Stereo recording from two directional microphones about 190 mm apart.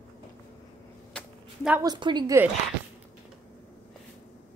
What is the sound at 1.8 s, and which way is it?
Speech, 20° right (ahead or behind).